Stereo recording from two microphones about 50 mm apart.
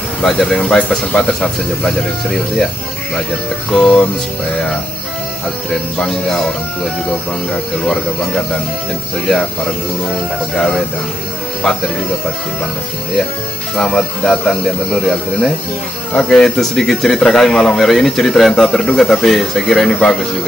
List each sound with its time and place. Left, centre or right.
0.2 s speech: centre
3.7 s speech: centre
5.9 s speech: centre
10.5 s speech: centre
13.7 s speech: centre